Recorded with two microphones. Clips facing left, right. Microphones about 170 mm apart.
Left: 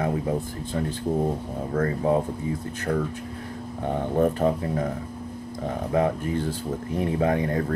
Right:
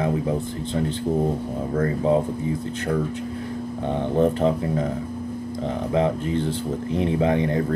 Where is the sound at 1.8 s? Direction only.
30° right (ahead or behind).